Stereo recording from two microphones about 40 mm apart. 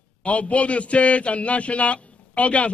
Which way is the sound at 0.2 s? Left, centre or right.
Left.